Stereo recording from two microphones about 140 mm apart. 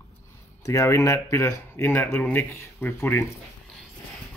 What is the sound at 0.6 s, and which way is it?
Speech, 25° left (ahead or behind).